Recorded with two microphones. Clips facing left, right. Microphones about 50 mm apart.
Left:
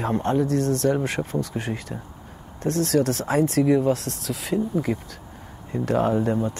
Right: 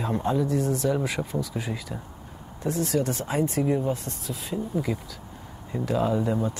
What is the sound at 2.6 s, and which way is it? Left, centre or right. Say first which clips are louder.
Speech: left 4 dB; left.